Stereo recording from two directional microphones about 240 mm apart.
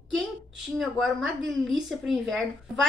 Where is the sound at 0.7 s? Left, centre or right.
Centre.